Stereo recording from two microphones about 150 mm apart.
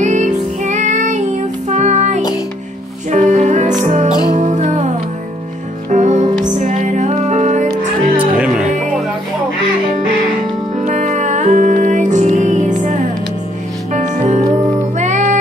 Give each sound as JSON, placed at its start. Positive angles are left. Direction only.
{"t": 0.0, "sound": "music", "side_deg": -55}
{"t": 8.2, "sound": "music", "side_deg": -5}
{"t": 10.8, "sound": "music", "side_deg": -55}